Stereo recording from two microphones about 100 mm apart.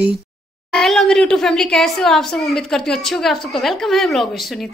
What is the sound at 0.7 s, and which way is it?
A woman's voice, 5° left (ahead or behind).